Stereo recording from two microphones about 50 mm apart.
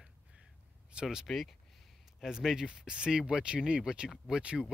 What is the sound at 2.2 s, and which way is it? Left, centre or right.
Speech, centre.